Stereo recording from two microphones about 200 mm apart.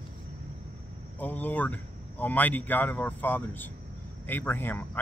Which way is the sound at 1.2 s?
10° left (ahead or behind).